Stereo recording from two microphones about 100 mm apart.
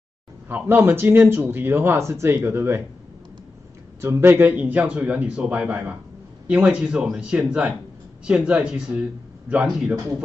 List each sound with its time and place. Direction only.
0.5 s speech: 20° right (ahead or behind)
4.0 s speech: 25° right (ahead or behind)